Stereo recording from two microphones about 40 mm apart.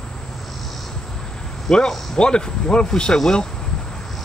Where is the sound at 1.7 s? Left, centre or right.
Centre.